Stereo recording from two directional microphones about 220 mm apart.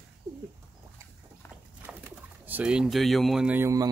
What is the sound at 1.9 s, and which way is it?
Speech, 10° right (ahead or behind).